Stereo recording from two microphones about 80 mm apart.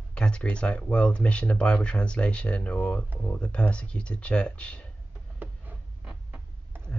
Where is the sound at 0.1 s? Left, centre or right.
Centre.